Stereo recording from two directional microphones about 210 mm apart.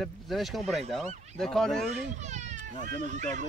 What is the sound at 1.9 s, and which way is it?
Speech, 35° right (ahead or behind).